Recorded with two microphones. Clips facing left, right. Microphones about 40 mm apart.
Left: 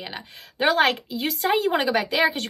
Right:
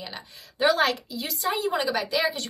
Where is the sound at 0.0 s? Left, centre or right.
Left.